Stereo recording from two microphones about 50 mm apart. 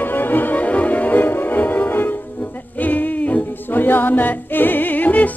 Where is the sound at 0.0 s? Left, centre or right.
Left.